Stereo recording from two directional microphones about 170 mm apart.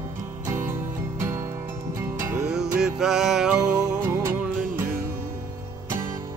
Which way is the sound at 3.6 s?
20° right (ahead or behind).